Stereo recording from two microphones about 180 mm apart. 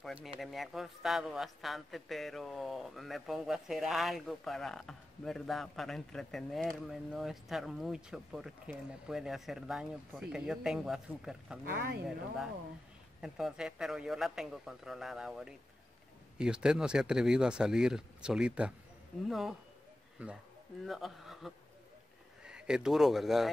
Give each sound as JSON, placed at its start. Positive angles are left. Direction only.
{"t": 0.0, "sound": "a sound", "side_deg": 0}
{"t": 0.4, "sound": "a man's voice", "side_deg": 0}
{"t": 11.6, "sound": "speech", "side_deg": -55}
{"t": 13.2, "sound": "a man's voice", "side_deg": 0}